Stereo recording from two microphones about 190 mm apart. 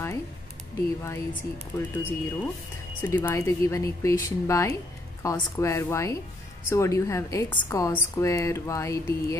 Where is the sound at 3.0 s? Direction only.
10° left (ahead or behind).